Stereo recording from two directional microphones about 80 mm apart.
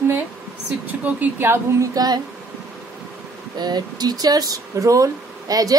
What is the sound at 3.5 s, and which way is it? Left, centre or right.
Speech, right.